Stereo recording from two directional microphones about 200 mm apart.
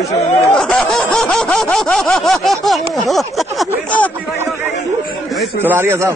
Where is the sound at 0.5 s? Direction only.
5° left (ahead or behind).